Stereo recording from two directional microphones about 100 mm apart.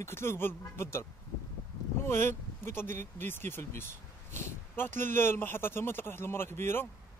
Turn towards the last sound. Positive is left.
turn(degrees=25)  # may be behind; listen again after turning